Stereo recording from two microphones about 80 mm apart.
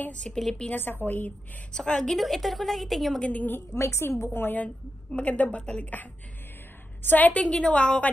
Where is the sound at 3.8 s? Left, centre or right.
Left; by 6.0 s centre.